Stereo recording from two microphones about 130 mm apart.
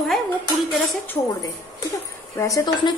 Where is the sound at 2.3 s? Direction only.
25° left (ahead or behind).